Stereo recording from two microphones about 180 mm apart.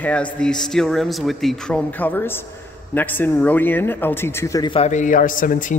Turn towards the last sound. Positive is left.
turn(degrees=45)  # may be behind; listen again after turning